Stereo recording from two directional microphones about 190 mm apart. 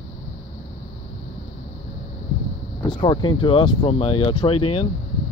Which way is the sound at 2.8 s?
25° left (ahead or behind).